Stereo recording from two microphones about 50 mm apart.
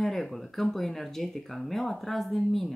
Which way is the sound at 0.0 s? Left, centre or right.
Centre.